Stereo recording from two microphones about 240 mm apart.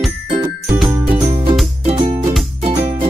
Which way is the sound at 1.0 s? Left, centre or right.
Centre.